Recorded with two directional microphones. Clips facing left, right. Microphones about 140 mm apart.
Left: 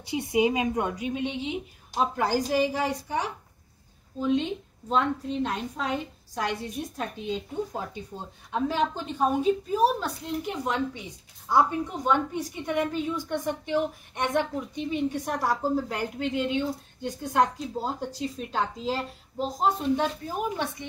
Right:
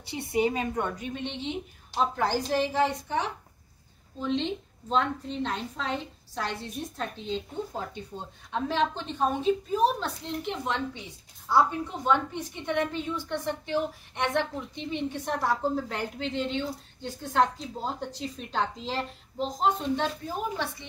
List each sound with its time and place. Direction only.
0.1 s a woman's voice: 15° left (ahead or behind)